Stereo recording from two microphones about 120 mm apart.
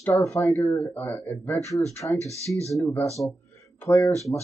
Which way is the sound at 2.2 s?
25° right (ahead or behind).